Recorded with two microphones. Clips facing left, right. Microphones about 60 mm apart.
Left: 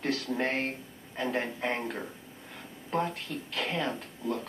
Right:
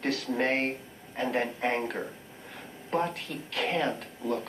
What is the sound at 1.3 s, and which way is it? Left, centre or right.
Speech, right.